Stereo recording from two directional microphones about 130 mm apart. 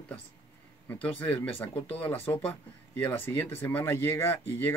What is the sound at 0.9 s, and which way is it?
Speech, 15° left (ahead or behind).